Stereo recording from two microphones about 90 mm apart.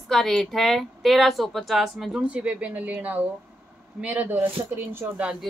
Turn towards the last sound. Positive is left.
turn(degrees=-20)  # may be behind; listen again after turning